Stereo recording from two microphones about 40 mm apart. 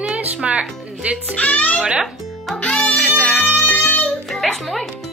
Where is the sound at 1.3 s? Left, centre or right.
Left.